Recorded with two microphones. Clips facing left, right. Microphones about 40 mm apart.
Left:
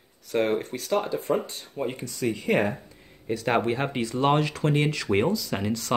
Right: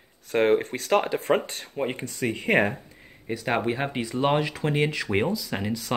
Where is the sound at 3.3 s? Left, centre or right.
Centre.